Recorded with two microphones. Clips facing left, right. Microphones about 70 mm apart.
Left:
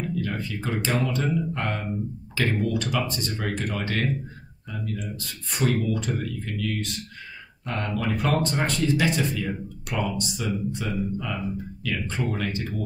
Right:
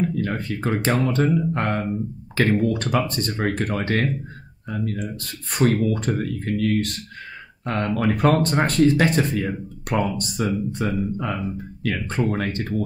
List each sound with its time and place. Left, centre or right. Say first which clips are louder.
0.0 s speech: right 5 dB; right